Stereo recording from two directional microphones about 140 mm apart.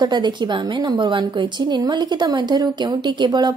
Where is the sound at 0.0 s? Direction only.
30° right (ahead or behind).